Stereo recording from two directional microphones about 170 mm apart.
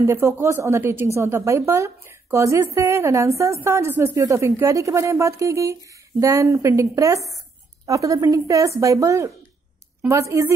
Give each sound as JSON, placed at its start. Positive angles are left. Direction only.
{"t": 0.0, "sound": "a woman's voice", "side_deg": -15}